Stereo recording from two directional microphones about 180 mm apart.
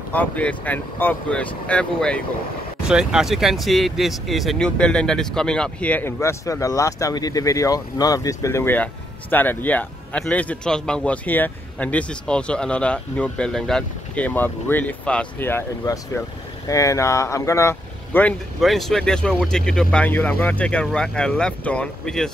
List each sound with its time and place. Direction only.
0.1 s speech: 10° left (ahead or behind)
18.6 s speech: centre (ahead or behind)